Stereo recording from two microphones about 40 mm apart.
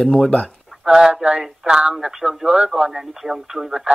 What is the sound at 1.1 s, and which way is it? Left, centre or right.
Speech, right.